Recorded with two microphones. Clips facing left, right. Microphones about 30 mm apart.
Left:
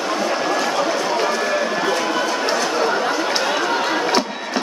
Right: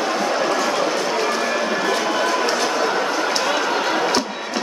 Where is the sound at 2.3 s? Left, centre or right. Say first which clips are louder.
Even; centre.